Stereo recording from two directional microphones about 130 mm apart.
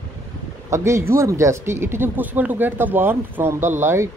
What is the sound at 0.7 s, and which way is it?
Speech, 20° right (ahead or behind).